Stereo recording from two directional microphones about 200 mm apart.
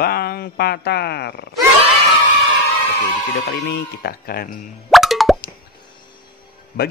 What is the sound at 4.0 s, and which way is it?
Speech, 50° left (ahead or behind).